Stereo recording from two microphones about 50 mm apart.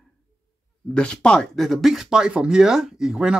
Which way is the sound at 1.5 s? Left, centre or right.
Centre.